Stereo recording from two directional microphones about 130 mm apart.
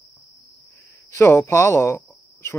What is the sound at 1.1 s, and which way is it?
Speech, 20° left (ahead or behind).